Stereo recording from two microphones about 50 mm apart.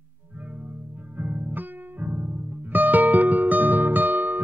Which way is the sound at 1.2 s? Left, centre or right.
Right.